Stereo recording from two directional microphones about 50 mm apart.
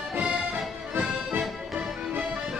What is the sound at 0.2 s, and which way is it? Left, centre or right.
Music, centre.